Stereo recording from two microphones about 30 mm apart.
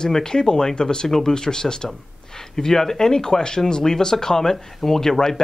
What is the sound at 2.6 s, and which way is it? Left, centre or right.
Speech, centre.